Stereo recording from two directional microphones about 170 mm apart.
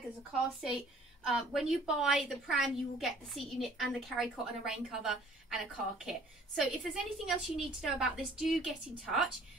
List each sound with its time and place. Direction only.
1.2 s a woman's voice: 5° right (ahead or behind)